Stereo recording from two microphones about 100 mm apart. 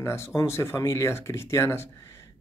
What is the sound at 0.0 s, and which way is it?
Speech, 25° left (ahead or behind).